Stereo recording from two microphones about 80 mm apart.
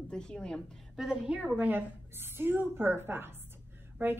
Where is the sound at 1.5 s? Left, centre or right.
Right.